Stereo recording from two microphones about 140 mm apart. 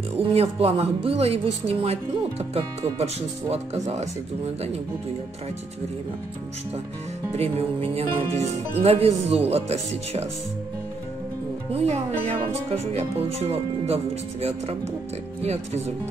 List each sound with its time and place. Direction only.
0.2 s speech: 45° right (ahead or behind)
7.3 s speech: 45° right (ahead or behind)
11.7 s speech: 50° right (ahead or behind)